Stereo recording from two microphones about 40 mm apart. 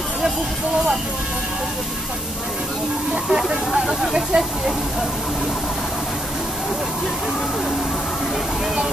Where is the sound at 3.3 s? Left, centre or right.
Centre.